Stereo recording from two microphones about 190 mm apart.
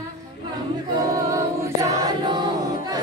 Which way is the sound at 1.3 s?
15° right (ahead or behind).